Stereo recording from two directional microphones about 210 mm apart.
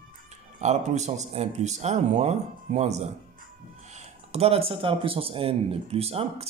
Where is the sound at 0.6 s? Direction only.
30° right (ahead or behind).